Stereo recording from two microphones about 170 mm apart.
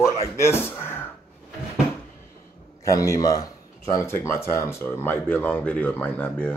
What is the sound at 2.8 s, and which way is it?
A man's voice, 20° left (ahead or behind).